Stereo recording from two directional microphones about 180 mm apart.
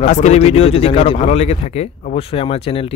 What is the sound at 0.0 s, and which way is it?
Speech, 40° left (ahead or behind).